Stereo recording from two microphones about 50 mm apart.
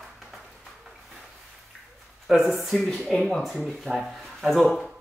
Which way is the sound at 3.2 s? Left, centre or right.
Centre.